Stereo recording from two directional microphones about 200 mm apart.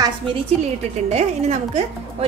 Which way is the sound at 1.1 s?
35° right (ahead or behind).